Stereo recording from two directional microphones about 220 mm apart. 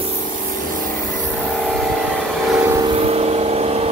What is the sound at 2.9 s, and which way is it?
Vehicle, 25° right (ahead or behind).